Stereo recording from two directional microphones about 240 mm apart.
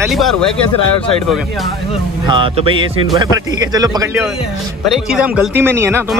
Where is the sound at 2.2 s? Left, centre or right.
Right.